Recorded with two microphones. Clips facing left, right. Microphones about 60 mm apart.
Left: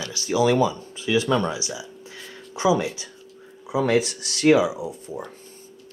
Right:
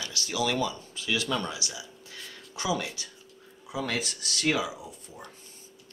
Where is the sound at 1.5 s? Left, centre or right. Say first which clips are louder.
Left 7 dB; left.